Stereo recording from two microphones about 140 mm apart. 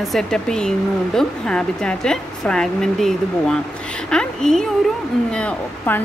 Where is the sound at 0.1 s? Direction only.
5° left (ahead or behind).